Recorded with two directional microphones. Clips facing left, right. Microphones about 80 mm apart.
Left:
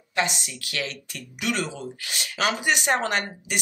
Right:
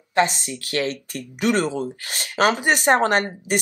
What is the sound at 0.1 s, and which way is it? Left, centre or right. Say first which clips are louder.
A woman's voice: right 7 dB; right.